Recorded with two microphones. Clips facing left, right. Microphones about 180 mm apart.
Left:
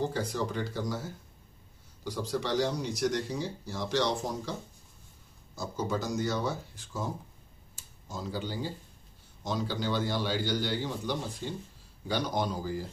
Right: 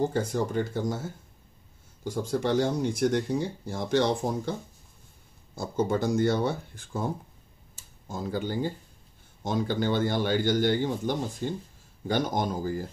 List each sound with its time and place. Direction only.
0.0 s a man's voice: 50° right (ahead or behind)
5.6 s speech: 55° right (ahead or behind)
8.1 s a man's voice: 55° right (ahead or behind)